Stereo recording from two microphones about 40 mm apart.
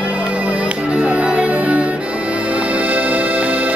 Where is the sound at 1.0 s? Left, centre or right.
Right.